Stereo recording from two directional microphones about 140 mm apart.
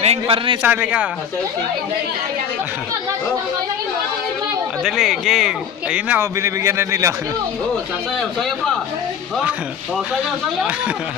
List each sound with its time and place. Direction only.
0.0 s a man's voice: 45° right (ahead or behind)
0.6 s a man's voice: 10° right (ahead or behind)
4.8 s speech: centre (ahead or behind)
6.3 s a man's voice: 20° right (ahead or behind)
8.2 s speech: centre (ahead or behind)